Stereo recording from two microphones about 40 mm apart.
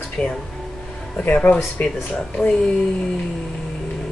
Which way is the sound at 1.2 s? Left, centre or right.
Left.